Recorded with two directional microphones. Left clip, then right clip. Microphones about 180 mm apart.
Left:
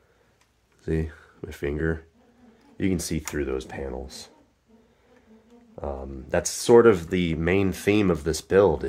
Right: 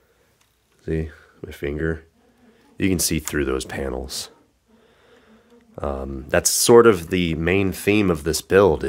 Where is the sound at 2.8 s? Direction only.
35° right (ahead or behind).